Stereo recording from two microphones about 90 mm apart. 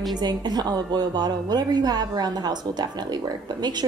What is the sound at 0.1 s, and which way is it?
A woman's voice, 50° right (ahead or behind).